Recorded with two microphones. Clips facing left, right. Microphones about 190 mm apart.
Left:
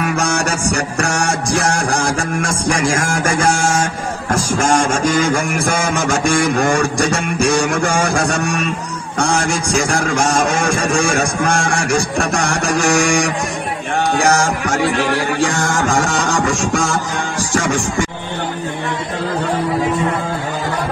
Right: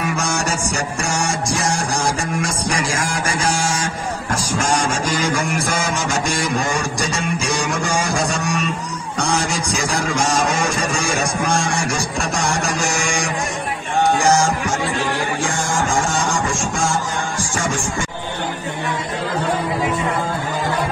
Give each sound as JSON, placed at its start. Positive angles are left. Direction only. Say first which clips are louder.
{"t": 0.0, "sound": "music", "louder": "left 4 dB", "side_deg": 65}
{"t": 2.7, "sound": "music", "louder": "left 8 dB", "side_deg": 50}
{"t": 4.6, "sound": "a man's voice", "louder": "left 4 dB", "side_deg": 50}
{"t": 14.1, "sound": "music", "louder": "left 3 dB", "side_deg": 65}